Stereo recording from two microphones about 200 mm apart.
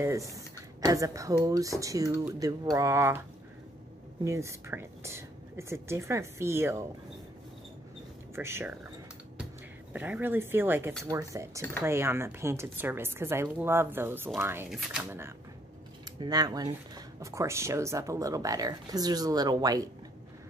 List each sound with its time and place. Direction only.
0.0 s a woman's voice: 15° right (ahead or behind)
4.2 s a woman's voice: 15° right (ahead or behind)
8.4 s a woman's voice: 10° right (ahead or behind)
9.9 s a woman's voice: 10° right (ahead or behind)
15.0 s a woman's voice: 10° right (ahead or behind)